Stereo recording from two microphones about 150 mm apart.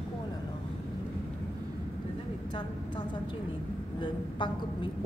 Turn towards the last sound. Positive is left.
turn(degrees=35)  # may be behind; listen again after turning